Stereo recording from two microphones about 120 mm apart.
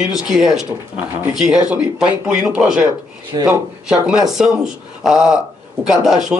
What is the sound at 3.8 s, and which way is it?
Speech, 5° right (ahead or behind).